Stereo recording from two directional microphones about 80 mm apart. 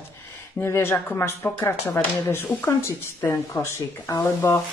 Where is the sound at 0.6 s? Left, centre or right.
Left.